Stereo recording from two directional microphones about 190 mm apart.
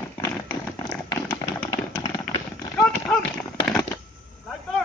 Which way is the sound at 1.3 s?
10° left (ahead or behind).